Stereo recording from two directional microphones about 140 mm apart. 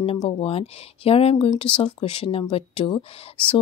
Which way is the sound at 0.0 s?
40° left (ahead or behind).